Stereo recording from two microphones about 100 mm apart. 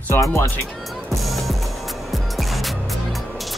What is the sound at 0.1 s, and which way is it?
Speech, 25° left (ahead or behind).